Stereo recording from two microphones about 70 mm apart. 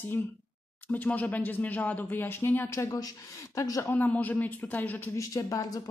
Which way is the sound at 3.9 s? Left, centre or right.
Left.